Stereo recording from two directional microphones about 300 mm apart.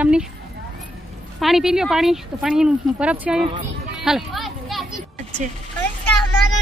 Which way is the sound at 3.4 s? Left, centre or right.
Centre.